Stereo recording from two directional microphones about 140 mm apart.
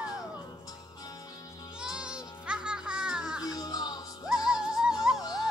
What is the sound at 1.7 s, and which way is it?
Music, 5° right (ahead or behind).